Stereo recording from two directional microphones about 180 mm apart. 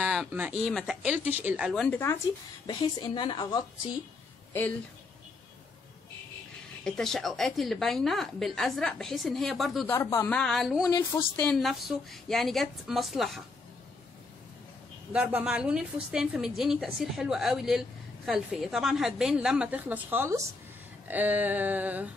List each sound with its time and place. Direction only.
0.0 s speech: 5° right (ahead or behind)
0.7 s a sound: 5° right (ahead or behind)
1.7 s a woman's voice: 5° left (ahead or behind); by 3.6 s 25° left (ahead or behind)
6.8 s a woman's voice: 5° left (ahead or behind)
9.9 s speech: 15° left (ahead or behind)
10.3 s a woman's voice: centre (ahead or behind)
10.8 s a woman's voice: 20° left (ahead or behind)
11.4 s a woman's voice: centre (ahead or behind)
15.1 s a woman's voice: 5° right (ahead or behind)
21.1 s a sound: 10° right (ahead or behind)